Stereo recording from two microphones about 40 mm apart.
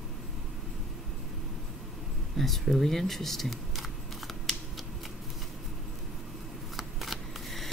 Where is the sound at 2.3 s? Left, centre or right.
Centre.